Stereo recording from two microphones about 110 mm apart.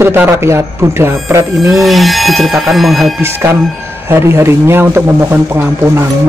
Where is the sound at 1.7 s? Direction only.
Centre (ahead or behind).